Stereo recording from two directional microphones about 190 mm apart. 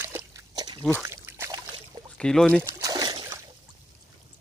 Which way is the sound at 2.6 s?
15° right (ahead or behind).